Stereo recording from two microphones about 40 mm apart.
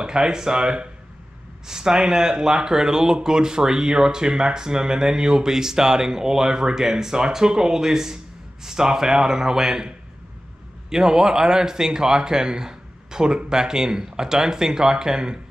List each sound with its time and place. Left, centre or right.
0.0 s speech: centre
10.9 s speech: centre